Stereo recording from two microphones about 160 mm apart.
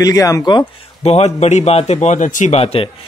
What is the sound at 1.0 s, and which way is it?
A man's voice, 40° left (ahead or behind).